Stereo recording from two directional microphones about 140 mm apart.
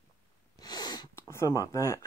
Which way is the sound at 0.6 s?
30° left (ahead or behind).